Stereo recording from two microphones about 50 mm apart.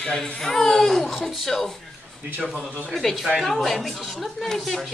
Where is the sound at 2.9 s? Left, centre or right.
Centre.